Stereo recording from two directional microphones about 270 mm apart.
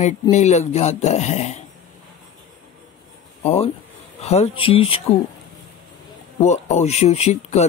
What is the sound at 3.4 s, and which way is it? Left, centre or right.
Speech, left.